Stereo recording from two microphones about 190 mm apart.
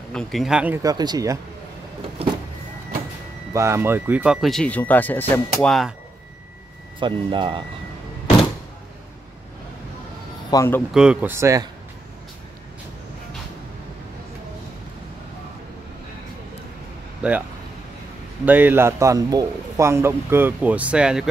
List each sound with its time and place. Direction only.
0.1 s speech: centre (ahead or behind)
0.8 s speech: 20° right (ahead or behind)
3.5 s speech: 15° right (ahead or behind); by 5.9 s centre (ahead or behind)
7.0 s speech: 25° right (ahead or behind)
10.5 s speech: 15° left (ahead or behind)
10.9 s a man's voice: 5° right (ahead or behind)
18.4 s a man's voice: 10° right (ahead or behind)